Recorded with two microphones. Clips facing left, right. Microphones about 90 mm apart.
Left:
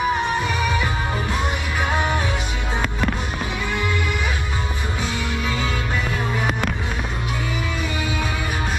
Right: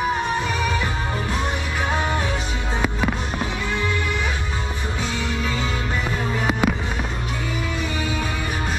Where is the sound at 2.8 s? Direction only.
5° right (ahead or behind).